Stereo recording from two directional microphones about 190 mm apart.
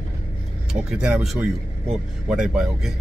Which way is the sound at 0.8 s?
5° right (ahead or behind).